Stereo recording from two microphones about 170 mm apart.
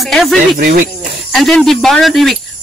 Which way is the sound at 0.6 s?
55° right (ahead or behind).